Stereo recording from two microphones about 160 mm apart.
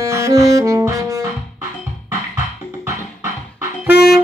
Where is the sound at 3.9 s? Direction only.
90° left.